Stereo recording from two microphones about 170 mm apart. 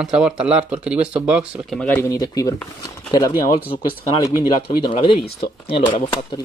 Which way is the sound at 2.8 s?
20° left (ahead or behind).